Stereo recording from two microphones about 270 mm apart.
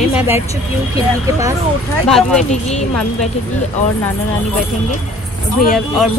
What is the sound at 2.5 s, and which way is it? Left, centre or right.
Speech, left.